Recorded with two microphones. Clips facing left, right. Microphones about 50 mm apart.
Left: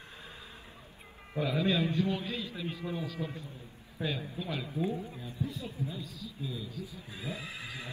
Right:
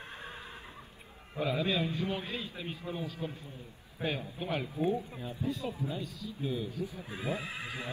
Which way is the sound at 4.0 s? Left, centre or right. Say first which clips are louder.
Even; right.